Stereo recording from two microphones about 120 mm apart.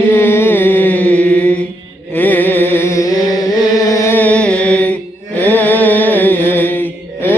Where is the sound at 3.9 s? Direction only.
25° left (ahead or behind).